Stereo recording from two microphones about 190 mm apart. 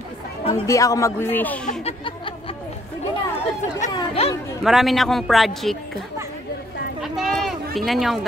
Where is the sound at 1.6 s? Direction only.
30° left (ahead or behind).